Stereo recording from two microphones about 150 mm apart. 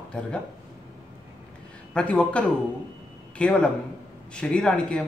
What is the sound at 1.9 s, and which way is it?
Speech, 10° left (ahead or behind).